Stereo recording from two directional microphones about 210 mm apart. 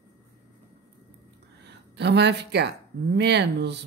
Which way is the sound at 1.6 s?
55° right (ahead or behind).